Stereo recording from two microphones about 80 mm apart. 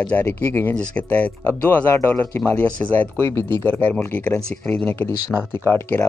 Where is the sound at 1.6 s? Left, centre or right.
Left.